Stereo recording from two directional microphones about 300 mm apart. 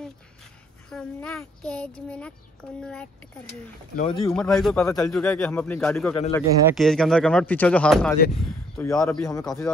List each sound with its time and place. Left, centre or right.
0.8 s a man's voice: centre
3.9 s speech: left
4.3 s a man's voice: centre
6.1 s speech: centre
6.8 s a man's voice: centre